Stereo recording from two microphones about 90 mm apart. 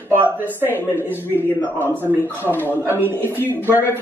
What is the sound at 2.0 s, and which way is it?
Speech, 20° left (ahead or behind).